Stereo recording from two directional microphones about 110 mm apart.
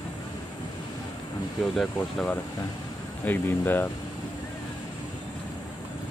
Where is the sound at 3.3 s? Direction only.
20° left (ahead or behind).